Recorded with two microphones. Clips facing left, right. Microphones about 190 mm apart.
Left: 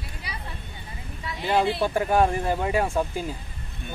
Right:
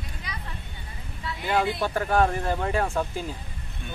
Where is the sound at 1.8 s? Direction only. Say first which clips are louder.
Left 2 dB; 15° left (ahead or behind).